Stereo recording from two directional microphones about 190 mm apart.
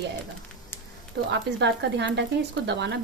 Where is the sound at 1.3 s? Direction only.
65° right (ahead or behind).